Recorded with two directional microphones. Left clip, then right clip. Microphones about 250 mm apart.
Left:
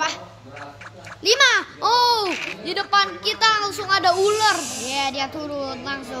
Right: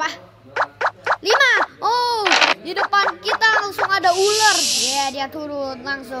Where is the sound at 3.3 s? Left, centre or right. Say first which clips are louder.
Right 2 dB; centre.